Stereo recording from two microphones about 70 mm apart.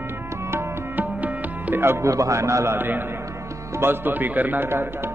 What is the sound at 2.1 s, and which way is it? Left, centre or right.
Speech, right.